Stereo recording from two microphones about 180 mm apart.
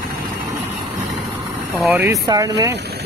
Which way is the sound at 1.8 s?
10° right (ahead or behind).